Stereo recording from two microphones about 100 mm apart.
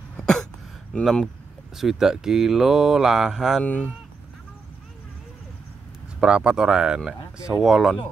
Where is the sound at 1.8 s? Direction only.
5° right (ahead or behind).